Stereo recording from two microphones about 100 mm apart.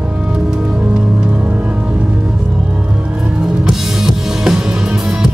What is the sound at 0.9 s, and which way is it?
Music, 15° right (ahead or behind).